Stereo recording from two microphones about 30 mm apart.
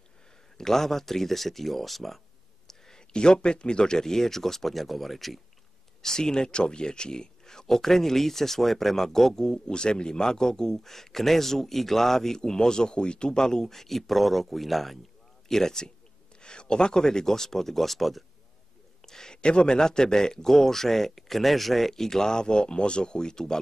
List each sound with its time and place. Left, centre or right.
0.6 s speech: centre
3.1 s speech: left; by 5.4 s centre
6.0 s speech: left
9.7 s a man's voice: left
13.4 s speech: centre
15.4 s speech: centre
19.0 s a sound: centre
19.3 s a man's voice: left